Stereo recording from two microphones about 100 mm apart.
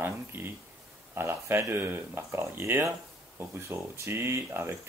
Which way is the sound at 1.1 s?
25° right (ahead or behind).